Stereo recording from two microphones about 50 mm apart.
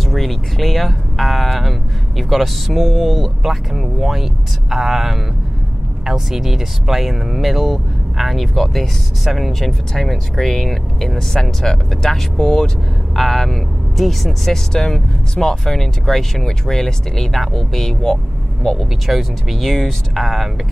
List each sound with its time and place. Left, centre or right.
0.0 s speech: centre